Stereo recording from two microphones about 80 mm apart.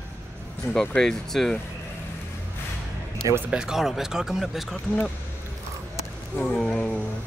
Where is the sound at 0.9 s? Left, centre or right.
Centre.